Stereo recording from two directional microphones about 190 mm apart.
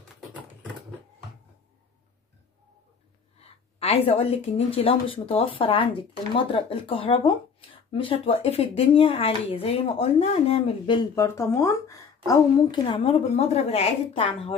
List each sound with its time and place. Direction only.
3.3 s a woman's voice: 30° left (ahead or behind)